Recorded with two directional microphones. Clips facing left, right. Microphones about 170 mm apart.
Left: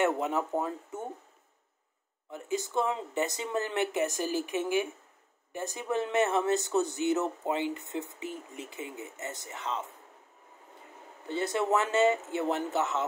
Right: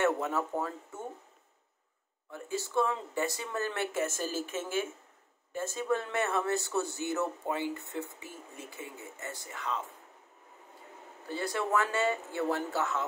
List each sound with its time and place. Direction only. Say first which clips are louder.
0.0 s speech: left 1 dB; 15° left (ahead or behind)
2.3 s speech: left 1 dB; 20° left (ahead or behind)
11.2 s speech: left 4 dB; 20° left (ahead or behind)